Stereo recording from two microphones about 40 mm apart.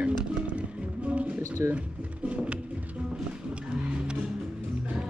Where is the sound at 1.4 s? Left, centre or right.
Right.